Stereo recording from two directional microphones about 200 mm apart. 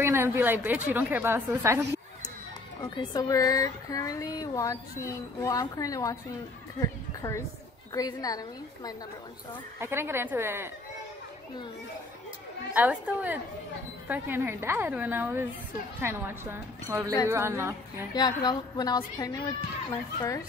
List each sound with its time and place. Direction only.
0.0 s speech: 10° right (ahead or behind)
2.8 s a woman's voice: 20° left (ahead or behind)
9.8 s speech: 10° right (ahead or behind)
12.7 s speech: 10° right (ahead or behind)
18.1 s a woman's voice: 20° left (ahead or behind)